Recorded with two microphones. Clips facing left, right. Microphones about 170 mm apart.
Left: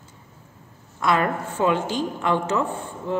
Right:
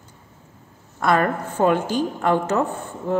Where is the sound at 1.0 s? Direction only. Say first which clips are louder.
Right 2 dB; 45° right (ahead or behind).